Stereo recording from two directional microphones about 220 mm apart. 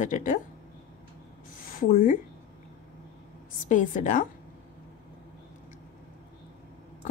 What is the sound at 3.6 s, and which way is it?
Speech, 35° left (ahead or behind).